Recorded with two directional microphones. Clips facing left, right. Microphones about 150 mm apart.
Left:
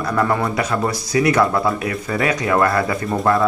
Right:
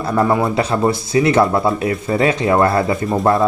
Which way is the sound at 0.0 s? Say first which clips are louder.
Right 3 dB; 25° right (ahead or behind).